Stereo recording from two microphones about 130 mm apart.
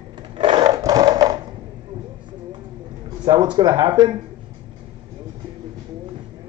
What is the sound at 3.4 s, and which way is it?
Speech, 30° right (ahead or behind).